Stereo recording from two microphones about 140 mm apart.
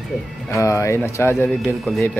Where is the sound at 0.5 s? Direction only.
20° left (ahead or behind).